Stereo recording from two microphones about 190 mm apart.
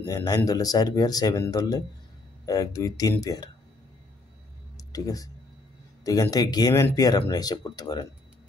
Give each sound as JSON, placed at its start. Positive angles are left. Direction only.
{"t": 0.0, "sound": "speech", "side_deg": 20}
{"t": 4.7, "sound": "speech", "side_deg": 20}